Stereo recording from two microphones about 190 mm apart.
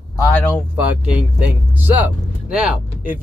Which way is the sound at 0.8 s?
5° right (ahead or behind).